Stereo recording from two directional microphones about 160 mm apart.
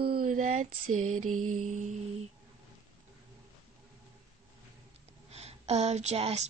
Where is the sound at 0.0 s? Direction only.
70° right (ahead or behind); by 0.9 s 50° right (ahead or behind).